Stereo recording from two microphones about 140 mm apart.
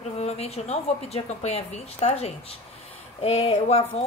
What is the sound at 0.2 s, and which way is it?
Speech, 50° left (ahead or behind).